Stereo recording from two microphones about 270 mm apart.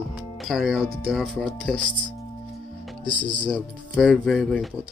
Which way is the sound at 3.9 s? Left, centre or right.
Centre.